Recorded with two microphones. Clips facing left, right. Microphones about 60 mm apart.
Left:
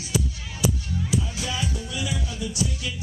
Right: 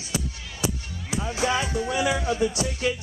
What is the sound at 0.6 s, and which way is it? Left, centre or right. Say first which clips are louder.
Speech: left 4 dB; right.